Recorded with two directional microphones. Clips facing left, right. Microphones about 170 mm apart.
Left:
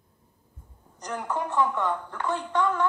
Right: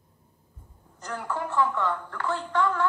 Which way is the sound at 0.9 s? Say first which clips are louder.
Left 2 dB; 20° left (ahead or behind).